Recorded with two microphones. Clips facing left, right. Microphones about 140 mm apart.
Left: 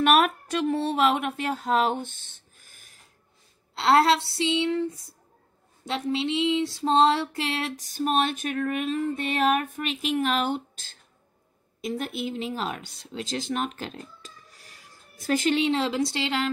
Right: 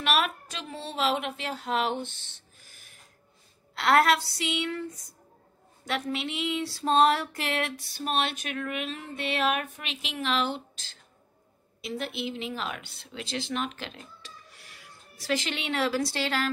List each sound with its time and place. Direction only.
0.0 s speech: 50° left (ahead or behind)
3.7 s speech: 25° left (ahead or behind)
5.9 s a sound: 25° left (ahead or behind); by 11.0 s 50° left (ahead or behind)
11.8 s speech: 45° left (ahead or behind); by 16.4 s 20° left (ahead or behind)